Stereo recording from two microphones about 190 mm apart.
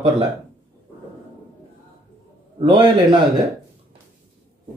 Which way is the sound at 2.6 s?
25° right (ahead or behind).